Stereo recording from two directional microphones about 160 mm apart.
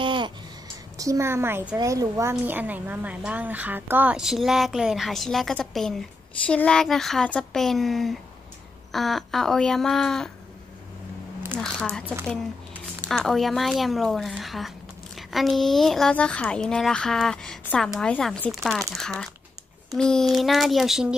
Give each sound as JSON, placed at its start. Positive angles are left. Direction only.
{"t": 0.0, "sound": "a sound", "side_deg": -30}
{"t": 0.9, "sound": "a woman's voice", "side_deg": -20}
{"t": 11.6, "sound": "speech", "side_deg": 5}
{"t": 13.0, "sound": "speech", "side_deg": 0}